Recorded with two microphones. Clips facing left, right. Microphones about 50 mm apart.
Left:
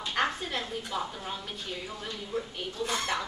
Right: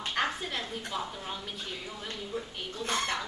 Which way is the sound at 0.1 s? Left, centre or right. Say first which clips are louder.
Left 2 dB; centre.